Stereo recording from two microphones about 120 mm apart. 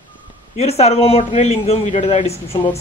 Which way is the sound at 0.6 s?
60° left (ahead or behind).